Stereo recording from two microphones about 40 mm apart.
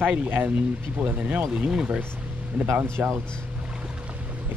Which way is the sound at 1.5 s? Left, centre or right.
Centre.